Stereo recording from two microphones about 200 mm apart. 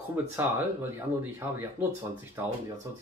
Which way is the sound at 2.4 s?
15° right (ahead or behind).